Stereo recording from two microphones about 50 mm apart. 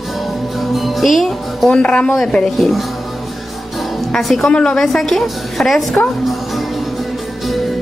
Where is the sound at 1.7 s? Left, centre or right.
Left.